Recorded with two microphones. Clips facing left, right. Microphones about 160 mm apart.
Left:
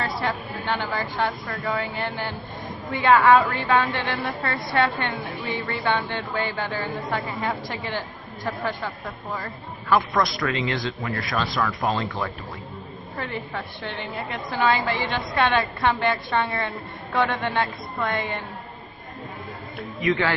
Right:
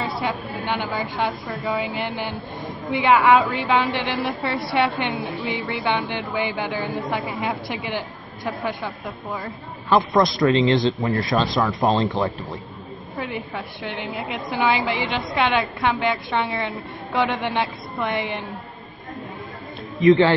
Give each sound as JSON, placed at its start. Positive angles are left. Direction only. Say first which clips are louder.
{"t": 0.2, "sound": "a woman's voice", "louder": "right 2 dB", "side_deg": -15}
{"t": 16.3, "sound": "a woman's voice", "louder": "right 1 dB", "side_deg": -15}
{"t": 20.0, "sound": "a man's voice", "louder": "right 9 dB", "side_deg": -30}